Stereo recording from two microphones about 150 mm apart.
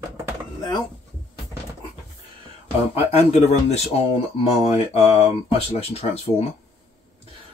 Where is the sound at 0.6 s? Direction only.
30° left (ahead or behind).